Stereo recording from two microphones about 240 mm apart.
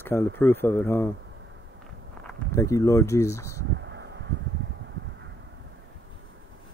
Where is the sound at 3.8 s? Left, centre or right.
Right.